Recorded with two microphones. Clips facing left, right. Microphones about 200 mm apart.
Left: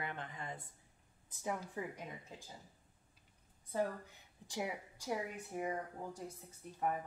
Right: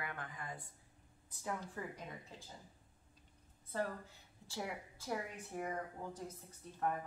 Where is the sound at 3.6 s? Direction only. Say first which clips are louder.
Left 3 dB; 15° left (ahead or behind).